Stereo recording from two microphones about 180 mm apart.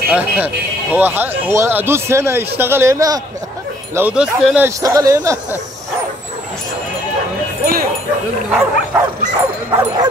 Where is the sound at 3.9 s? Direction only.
5° right (ahead or behind).